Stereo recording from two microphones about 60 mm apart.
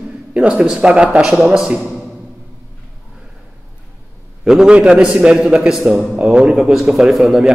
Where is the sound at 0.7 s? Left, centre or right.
Centre.